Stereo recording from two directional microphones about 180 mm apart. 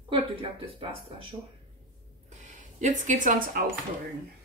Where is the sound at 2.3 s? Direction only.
40° right (ahead or behind).